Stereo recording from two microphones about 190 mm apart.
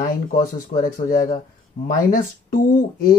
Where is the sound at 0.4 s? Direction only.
45° left (ahead or behind).